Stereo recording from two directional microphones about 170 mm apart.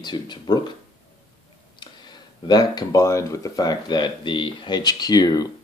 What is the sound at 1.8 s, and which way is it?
Speech, 25° left (ahead or behind).